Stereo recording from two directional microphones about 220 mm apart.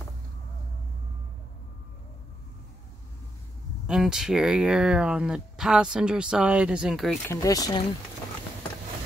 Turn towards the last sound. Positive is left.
turn(degrees=15)  # may be behind; listen again after turning